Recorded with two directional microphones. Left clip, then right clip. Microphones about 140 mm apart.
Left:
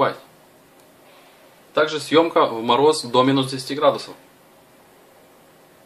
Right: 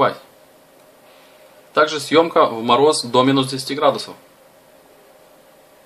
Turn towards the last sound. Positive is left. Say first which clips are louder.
# right 1 dB
turn(degrees=-30)  # may be behind; listen again after turning